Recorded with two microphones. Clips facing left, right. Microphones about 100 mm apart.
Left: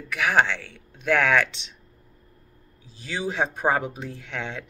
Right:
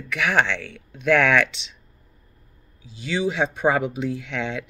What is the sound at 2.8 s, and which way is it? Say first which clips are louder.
Speech: right 6 dB; 45° left (ahead or behind).